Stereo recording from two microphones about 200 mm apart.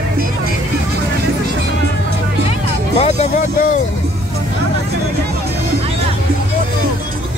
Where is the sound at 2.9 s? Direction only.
30° left (ahead or behind).